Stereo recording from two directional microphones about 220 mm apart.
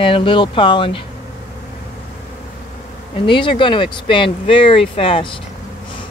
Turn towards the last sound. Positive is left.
turn(degrees=25)  # may be behind; listen again after turning